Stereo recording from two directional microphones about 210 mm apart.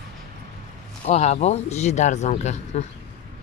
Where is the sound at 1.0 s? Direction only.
30° left (ahead or behind).